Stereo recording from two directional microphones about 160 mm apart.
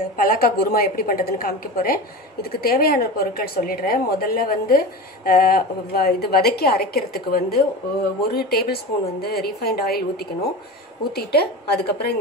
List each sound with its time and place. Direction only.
0.2 s a woman's voice: 65° left (ahead or behind)
11.1 s a woman's voice: 80° left